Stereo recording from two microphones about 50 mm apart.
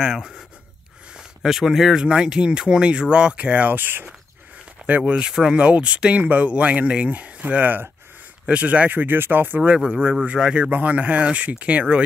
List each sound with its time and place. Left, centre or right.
0.0 s speech: centre
3.6 s speech: right
4.8 s a sound: centre
5.2 s speech: centre; by 7.9 s right
8.5 s speech: right
9.0 s speech: right
9.8 s speech: right